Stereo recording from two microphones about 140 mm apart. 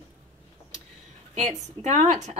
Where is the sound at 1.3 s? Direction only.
55° right (ahead or behind).